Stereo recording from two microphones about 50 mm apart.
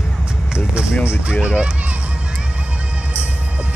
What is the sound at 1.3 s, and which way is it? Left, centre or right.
Speech, right.